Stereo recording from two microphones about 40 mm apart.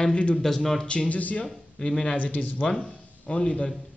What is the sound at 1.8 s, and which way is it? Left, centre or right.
Speech, left.